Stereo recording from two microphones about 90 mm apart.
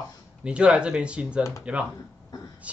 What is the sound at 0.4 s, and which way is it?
Speech, 10° right (ahead or behind).